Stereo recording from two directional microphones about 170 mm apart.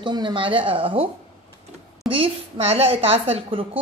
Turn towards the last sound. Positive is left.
turn(degrees=-30)  # may be behind; listen again after turning